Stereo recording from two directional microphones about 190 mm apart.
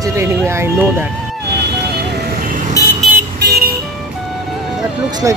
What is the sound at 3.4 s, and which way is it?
Vehicle, 55° right (ahead or behind).